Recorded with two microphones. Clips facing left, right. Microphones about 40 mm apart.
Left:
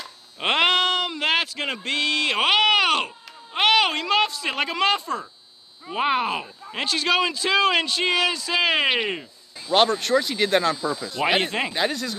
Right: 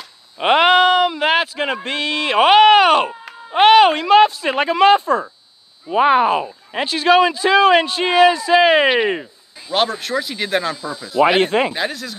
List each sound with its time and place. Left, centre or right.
0.4 s a sound: centre
1.8 s speech: centre
9.7 s speech: centre